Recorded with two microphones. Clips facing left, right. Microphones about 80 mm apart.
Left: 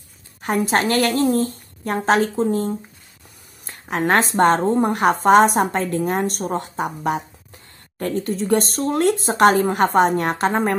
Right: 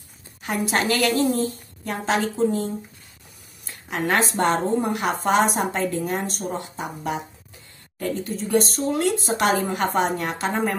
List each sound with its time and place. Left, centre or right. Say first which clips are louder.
0.4 s a woman's voice: left 4 dB; left
8.0 s a woman's voice: left 4 dB; left